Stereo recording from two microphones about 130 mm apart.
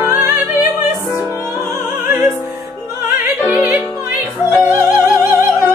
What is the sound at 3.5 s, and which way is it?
Music, 5° right (ahead or behind).